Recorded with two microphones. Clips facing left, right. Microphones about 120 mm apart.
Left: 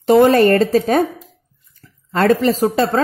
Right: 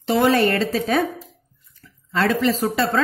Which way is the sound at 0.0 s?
45° left (ahead or behind).